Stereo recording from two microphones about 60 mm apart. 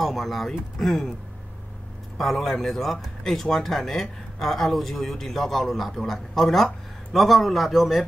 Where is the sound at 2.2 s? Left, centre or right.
Centre.